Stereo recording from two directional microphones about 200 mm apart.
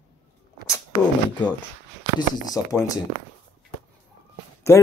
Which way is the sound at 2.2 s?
20° left (ahead or behind).